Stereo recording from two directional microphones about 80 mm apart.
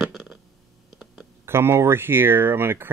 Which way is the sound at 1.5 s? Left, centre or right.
Right.